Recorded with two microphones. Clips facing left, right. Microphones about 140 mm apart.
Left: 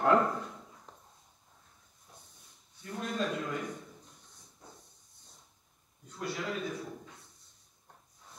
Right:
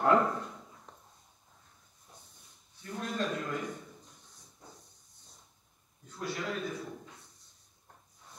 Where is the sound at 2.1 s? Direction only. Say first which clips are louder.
Even; centre (ahead or behind).